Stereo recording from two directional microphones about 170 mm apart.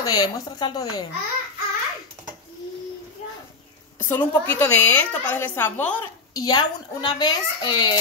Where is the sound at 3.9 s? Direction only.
10° left (ahead or behind).